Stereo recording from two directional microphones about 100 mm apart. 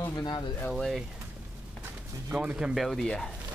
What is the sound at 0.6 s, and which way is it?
Speech, centre (ahead or behind).